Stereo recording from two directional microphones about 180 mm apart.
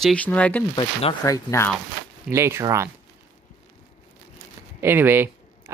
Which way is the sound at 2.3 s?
15° right (ahead or behind).